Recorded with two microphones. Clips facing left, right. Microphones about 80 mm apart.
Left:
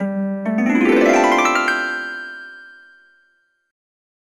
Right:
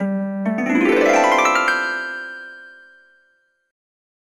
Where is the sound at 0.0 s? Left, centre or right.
Centre.